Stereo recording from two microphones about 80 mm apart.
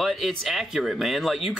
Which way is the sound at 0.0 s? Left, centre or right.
Centre.